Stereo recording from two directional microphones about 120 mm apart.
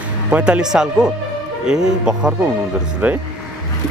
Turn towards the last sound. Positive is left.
turn(degrees=-15)  # may be behind; listen again after turning